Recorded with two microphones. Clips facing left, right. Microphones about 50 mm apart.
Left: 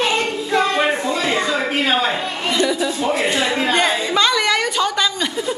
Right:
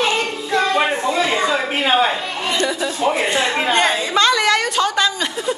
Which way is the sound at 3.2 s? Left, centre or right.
Centre.